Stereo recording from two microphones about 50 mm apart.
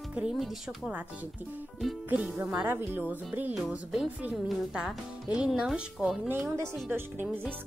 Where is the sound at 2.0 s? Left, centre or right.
Right.